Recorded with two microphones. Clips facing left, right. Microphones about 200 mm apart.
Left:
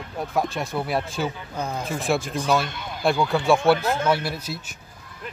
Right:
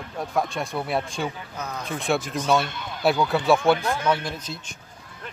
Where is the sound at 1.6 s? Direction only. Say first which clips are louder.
Left 5 dB; 30° left (ahead or behind).